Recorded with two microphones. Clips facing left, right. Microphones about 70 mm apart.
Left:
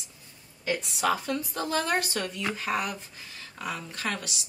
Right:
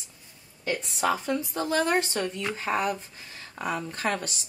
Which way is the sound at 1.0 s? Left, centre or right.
Centre.